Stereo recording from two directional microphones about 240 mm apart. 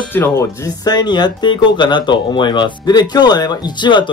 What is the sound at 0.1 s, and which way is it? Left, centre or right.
Speech, centre.